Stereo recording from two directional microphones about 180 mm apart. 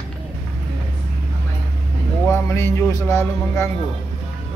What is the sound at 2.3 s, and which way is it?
Speech, 15° left (ahead or behind).